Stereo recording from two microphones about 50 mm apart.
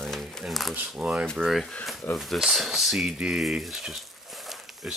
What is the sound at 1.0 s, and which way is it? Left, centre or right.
Speech, right.